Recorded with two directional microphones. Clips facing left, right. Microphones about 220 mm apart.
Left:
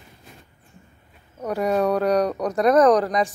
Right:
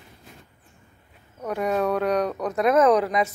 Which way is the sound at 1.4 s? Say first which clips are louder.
Left 3 dB; centre (ahead or behind).